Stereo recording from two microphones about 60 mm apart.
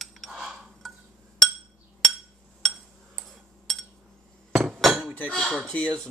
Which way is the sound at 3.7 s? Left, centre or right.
Centre.